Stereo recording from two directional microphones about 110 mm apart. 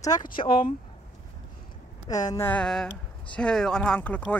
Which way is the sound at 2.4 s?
10° left (ahead or behind).